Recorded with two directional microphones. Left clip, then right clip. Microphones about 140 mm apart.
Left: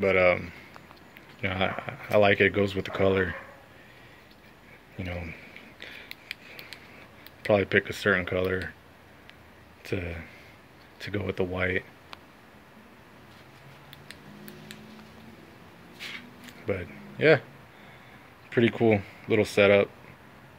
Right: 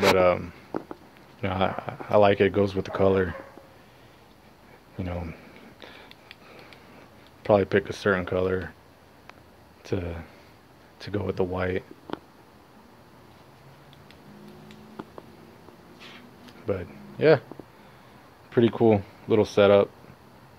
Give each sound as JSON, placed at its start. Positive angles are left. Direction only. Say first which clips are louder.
{"t": 0.2, "sound": "speech", "louder": "right 1 dB", "side_deg": -10}
{"t": 4.9, "sound": "a sound", "louder": "right 2 dB", "side_deg": -20}
{"t": 7.4, "sound": "speech", "louder": "right 2 dB", "side_deg": -15}
{"t": 9.8, "sound": "speech", "louder": "right 2 dB", "side_deg": -15}
{"t": 16.6, "sound": "speech", "louder": "right 2 dB", "side_deg": -5}
{"t": 18.5, "sound": "speech", "louder": "right 2 dB", "side_deg": -15}